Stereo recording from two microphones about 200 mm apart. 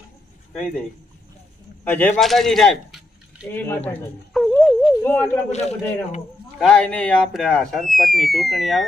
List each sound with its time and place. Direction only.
0.5 s speech: 5° left (ahead or behind)
1.9 s speech: 5° left (ahead or behind)
3.6 s a sound: 10° left (ahead or behind)
5.5 s a man's voice: 35° left (ahead or behind)
6.6 s speech: 5° left (ahead or behind)